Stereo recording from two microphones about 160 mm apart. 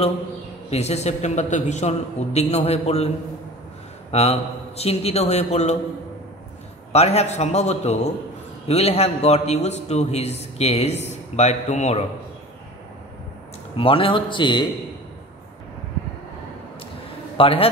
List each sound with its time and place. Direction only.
0.7 s a man's voice: 40° left (ahead or behind)
4.1 s a man's voice: 40° left (ahead or behind)
6.9 s a man's voice: 40° left (ahead or behind)
13.7 s a man's voice: 35° left (ahead or behind)
17.4 s a man's voice: 35° left (ahead or behind)